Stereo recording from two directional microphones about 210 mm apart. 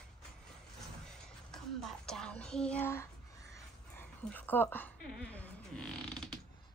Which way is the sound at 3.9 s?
10° left (ahead or behind).